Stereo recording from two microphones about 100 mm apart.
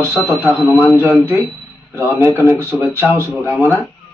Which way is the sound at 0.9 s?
20° right (ahead or behind).